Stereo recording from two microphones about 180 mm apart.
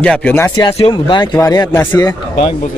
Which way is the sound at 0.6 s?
25° left (ahead or behind).